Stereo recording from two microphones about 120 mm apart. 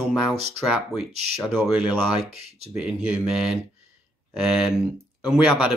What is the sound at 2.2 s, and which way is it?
Speech, 60° right (ahead or behind).